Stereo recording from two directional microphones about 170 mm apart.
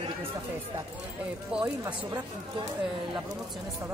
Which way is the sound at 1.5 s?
5° right (ahead or behind).